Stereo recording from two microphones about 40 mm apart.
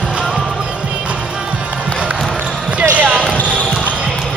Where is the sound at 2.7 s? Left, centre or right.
Right.